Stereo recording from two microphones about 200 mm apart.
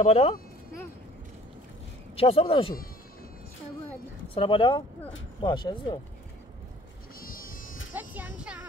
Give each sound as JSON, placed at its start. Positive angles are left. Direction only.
{"t": 0.0, "sound": "speech", "side_deg": 30}
{"t": 2.1, "sound": "speech", "side_deg": 30}
{"t": 4.3, "sound": "speech", "side_deg": 25}
{"t": 7.2, "sound": "sheep", "side_deg": 45}
{"t": 7.9, "sound": "speech", "side_deg": -10}